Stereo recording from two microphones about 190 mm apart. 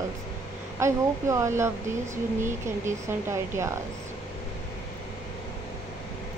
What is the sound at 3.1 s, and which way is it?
Speech, 15° right (ahead or behind).